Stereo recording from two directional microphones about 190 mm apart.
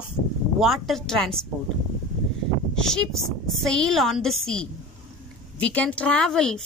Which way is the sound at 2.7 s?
5° left (ahead or behind).